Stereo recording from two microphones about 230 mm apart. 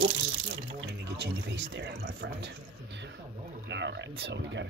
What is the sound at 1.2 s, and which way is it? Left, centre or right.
Speech, right.